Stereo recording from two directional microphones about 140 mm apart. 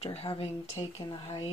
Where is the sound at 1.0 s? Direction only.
30° left (ahead or behind).